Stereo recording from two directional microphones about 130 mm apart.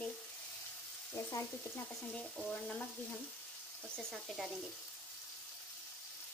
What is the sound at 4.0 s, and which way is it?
Frying, centre (ahead or behind).